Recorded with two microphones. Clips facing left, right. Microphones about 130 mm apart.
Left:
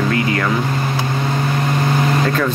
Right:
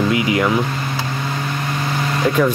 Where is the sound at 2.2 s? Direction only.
15° right (ahead or behind).